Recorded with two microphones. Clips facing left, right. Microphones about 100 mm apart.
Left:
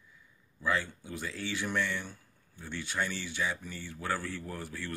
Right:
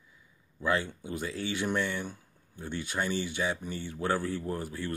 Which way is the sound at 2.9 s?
40° right (ahead or behind).